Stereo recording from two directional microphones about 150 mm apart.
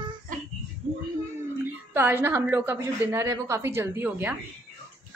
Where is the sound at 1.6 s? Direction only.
15° right (ahead or behind).